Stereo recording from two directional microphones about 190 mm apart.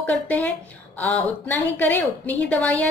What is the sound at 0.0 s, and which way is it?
A woman's voice, 10° left (ahead or behind).